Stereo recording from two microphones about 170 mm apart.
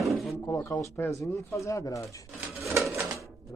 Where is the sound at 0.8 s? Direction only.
15° left (ahead or behind).